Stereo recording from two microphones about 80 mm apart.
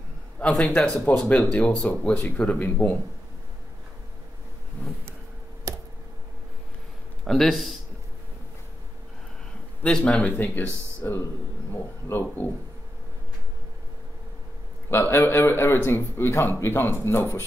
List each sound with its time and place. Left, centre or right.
0.4 s a man's voice: centre
5.7 s a sound: right
7.2 s a man's voice: centre
9.8 s speech: centre
14.9 s speech: left